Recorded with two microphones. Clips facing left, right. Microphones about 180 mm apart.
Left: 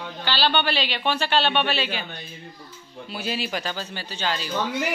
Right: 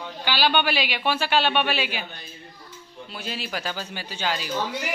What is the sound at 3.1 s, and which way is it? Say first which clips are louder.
Speech: left 4 dB; 5° left (ahead or behind).